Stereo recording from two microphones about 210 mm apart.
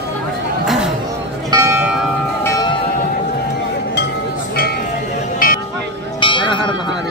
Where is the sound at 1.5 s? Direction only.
15° right (ahead or behind).